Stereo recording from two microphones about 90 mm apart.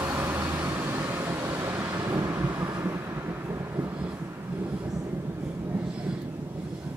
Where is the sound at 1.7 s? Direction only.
20° right (ahead or behind).